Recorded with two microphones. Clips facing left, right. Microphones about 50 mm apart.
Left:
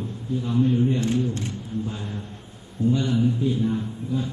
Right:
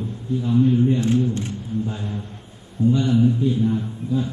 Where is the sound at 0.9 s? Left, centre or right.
Right.